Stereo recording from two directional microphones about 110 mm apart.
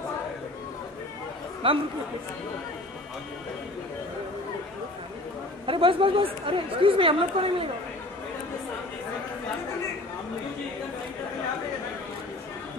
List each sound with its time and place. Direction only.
1.6 s speech: 55° right (ahead or behind)
5.7 s speech: 55° right (ahead or behind)